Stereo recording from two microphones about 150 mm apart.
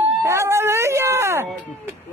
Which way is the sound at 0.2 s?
20° right (ahead or behind).